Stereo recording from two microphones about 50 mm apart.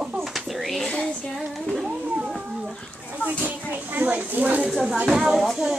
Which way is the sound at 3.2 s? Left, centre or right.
Right.